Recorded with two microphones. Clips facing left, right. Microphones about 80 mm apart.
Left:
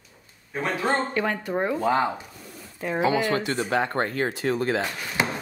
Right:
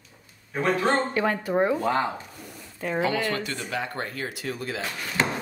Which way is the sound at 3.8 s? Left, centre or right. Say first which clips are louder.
Left 6 dB; left.